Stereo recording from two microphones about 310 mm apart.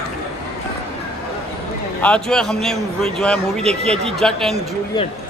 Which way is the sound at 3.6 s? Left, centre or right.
Centre.